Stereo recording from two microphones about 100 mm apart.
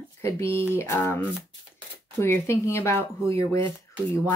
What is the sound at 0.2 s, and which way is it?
Speech, 25° left (ahead or behind).